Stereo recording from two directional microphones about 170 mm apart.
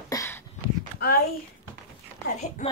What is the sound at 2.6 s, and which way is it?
Speech, 45° left (ahead or behind).